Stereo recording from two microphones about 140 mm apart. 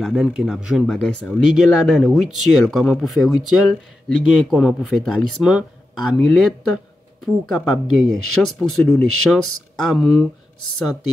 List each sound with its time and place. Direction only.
0.0 s speech: 5° right (ahead or behind)